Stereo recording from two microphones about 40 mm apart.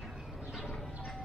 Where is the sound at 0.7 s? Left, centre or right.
Centre.